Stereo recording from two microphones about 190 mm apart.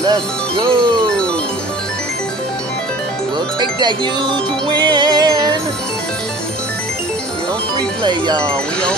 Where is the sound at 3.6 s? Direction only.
20° right (ahead or behind).